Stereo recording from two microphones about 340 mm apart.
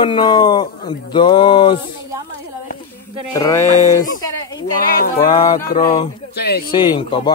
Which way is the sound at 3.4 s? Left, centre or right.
Centre.